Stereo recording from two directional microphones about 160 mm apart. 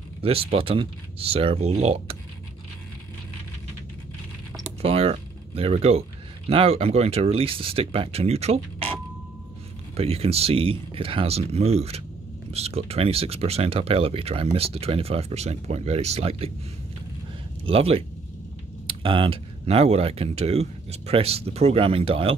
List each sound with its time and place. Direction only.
0.2 s speech: 35° right (ahead or behind)
4.8 s speech: 35° right (ahead or behind)
17.6 s speech: 35° right (ahead or behind)